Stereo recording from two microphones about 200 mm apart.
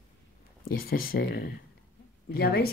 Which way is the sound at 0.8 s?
45° left (ahead or behind).